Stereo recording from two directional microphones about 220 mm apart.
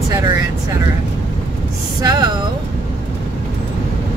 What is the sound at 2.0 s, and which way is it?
Speech, 20° right (ahead or behind).